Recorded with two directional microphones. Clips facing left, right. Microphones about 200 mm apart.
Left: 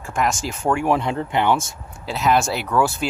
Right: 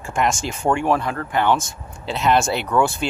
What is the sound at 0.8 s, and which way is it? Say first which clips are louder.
Speech: left 1 dB; 20° left (ahead or behind).